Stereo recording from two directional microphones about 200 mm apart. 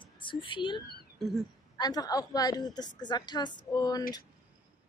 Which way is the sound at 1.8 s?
20° left (ahead or behind).